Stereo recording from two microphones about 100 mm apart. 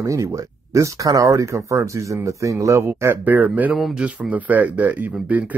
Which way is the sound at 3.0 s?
20° right (ahead or behind).